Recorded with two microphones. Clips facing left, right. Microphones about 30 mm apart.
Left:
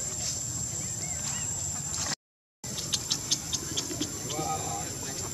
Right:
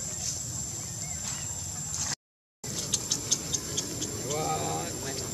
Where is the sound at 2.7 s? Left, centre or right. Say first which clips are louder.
Left 1 dB; left.